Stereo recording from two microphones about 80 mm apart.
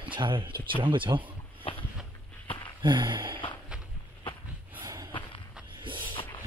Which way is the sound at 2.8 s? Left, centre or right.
Right.